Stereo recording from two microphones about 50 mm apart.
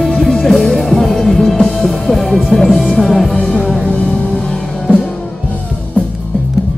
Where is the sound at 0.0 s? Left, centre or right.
Centre.